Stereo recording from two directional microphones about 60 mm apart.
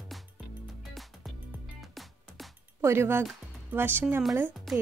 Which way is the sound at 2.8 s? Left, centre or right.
Right.